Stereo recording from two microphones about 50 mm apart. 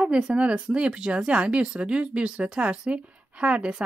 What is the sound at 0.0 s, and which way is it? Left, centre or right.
Speech, centre.